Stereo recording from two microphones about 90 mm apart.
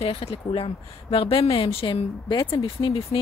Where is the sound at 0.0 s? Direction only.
90° left.